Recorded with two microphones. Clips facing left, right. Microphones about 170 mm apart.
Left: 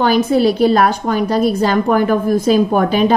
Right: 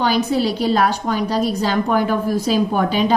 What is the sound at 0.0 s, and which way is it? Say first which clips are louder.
A woman's voice: left 5 dB; 50° left (ahead or behind).